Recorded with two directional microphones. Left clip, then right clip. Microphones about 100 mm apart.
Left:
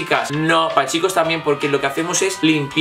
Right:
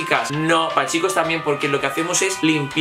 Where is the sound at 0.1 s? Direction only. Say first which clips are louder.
Left 2 dB; 5° left (ahead or behind).